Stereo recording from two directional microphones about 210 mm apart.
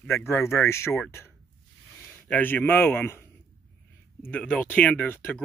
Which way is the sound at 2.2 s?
10° left (ahead or behind).